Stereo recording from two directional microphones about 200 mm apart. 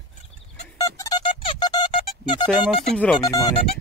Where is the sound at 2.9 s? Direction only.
Centre (ahead or behind).